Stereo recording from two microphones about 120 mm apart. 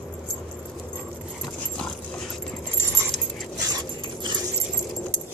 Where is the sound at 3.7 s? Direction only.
35° right (ahead or behind).